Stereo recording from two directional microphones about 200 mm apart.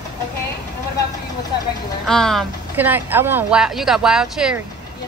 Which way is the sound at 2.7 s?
10° right (ahead or behind).